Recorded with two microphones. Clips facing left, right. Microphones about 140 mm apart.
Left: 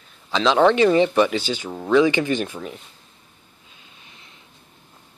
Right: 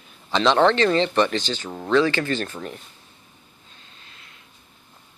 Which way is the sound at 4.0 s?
15° left (ahead or behind).